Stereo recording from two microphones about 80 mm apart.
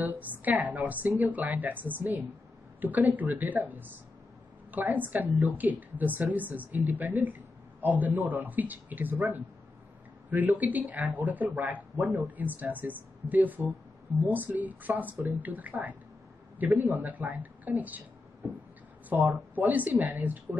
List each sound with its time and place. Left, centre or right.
0.0 s a woman's voice: right
19.0 s a woman's voice: right